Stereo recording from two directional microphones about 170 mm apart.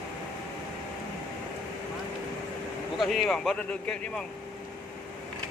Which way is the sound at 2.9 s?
Centre (ahead or behind).